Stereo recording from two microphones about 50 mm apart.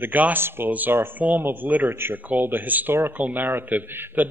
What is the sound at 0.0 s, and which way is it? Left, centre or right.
A man's voice, right.